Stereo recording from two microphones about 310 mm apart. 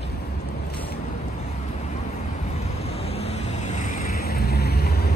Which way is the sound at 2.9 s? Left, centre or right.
Centre.